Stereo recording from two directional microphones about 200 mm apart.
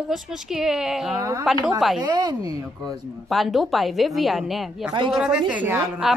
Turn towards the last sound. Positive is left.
turn(degrees=-10)  # may be behind; listen again after turning